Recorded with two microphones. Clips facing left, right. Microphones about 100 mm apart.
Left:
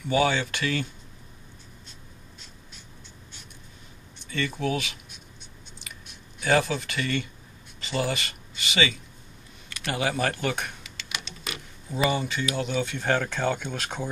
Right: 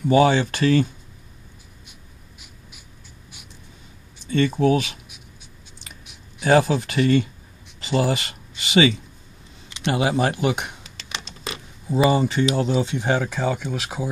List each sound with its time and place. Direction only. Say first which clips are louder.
0.0 s speech: right 7 dB; 30° right (ahead or behind)
1.9 s a sound: even; 10° right (ahead or behind)
4.3 s speech: right 9 dB; 35° right (ahead or behind)
6.4 s speech: right 6 dB; 35° right (ahead or behind)
7.8 s a sound: right 7 dB; 35° right (ahead or behind)
9.7 s speech: right 6 dB; 20° right (ahead or behind)
10.8 s a sound: right 2 dB; 30° right (ahead or behind)
12.1 s speech: right 8 dB; 35° right (ahead or behind)
12.9 s speech: right 3 dB; 10° right (ahead or behind)